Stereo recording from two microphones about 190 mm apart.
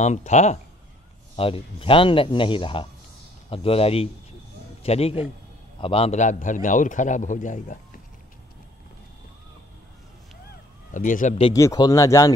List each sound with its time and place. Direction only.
0.0 s a man's voice: 40° left (ahead or behind)
10.9 s a man's voice: 45° left (ahead or behind)
11.5 s speech: 15° left (ahead or behind)